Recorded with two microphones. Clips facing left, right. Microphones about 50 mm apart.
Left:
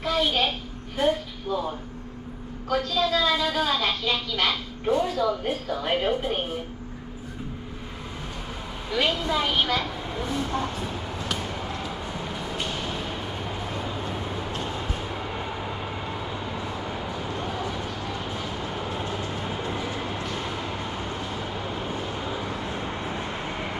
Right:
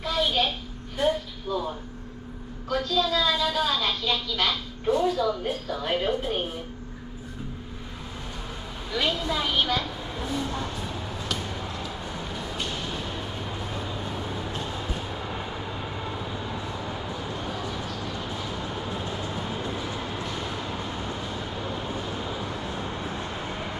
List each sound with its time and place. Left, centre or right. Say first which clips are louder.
0.0 s a sound: left 1 dB; centre
0.9 s speech: left 1 dB; centre
2.7 s a woman's voice: left 1 dB; centre
5.0 s a woman's voice: right 1 dB; centre
5.9 s speech: left 1 dB; centre
8.9 s a woman's voice: left 2 dB; centre
11.8 s a sound: left 2 dB; centre
16.1 s vehicle: left 1 dB; centre